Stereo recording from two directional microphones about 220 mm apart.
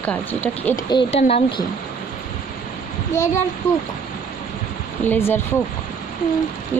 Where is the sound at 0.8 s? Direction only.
25° left (ahead or behind).